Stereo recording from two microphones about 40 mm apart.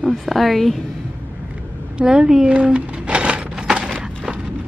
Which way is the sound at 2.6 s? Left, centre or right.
Right.